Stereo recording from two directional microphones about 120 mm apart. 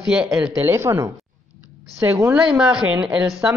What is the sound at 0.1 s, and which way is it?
Speech, 5° right (ahead or behind).